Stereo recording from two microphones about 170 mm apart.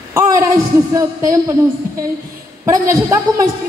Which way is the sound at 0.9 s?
20° right (ahead or behind).